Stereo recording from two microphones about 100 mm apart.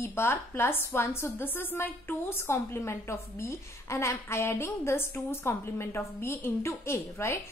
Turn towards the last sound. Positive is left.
turn(degrees=25)  # may be behind; listen again after turning